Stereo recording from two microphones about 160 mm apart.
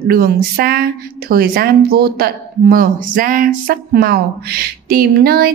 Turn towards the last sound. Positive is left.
turn(degrees=-70)  # may be behind; listen again after turning